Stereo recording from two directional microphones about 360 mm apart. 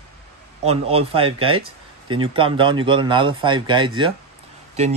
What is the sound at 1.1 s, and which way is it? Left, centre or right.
Speech, centre.